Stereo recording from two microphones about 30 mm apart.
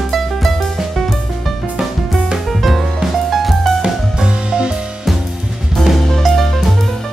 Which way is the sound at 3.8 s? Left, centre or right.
Right.